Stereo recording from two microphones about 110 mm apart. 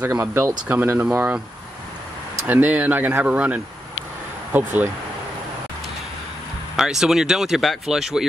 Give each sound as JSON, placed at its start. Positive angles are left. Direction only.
{"t": 0.0, "sound": "speech", "side_deg": -20}
{"t": 2.4, "sound": "speech", "side_deg": -15}
{"t": 6.8, "sound": "speech", "side_deg": -5}